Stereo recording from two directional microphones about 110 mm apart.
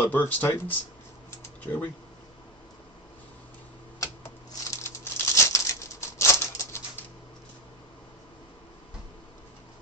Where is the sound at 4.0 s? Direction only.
30° left (ahead or behind).